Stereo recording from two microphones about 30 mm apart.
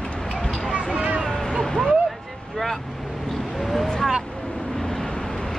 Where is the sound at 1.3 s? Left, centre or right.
Centre.